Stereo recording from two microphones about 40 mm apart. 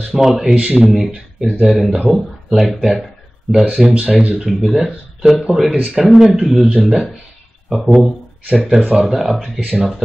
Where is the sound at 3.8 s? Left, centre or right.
Centre.